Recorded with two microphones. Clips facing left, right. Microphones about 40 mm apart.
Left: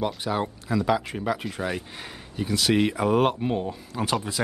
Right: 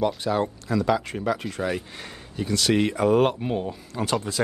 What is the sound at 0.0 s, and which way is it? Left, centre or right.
Speech, centre.